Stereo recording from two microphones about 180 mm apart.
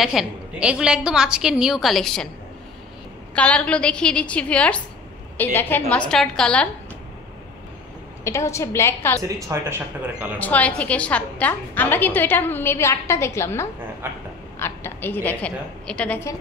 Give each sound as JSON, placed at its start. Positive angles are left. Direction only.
{"t": 0.0, "sound": "a woman's voice", "side_deg": 0}
{"t": 3.3, "sound": "a woman's voice", "side_deg": 5}
{"t": 8.2, "sound": "a woman's voice", "side_deg": 15}
{"t": 9.5, "sound": "speech", "side_deg": -15}
{"t": 10.4, "sound": "a woman's voice", "side_deg": 10}
{"t": 14.0, "sound": "speech", "side_deg": -10}
{"t": 14.6, "sound": "a woman's voice", "side_deg": 10}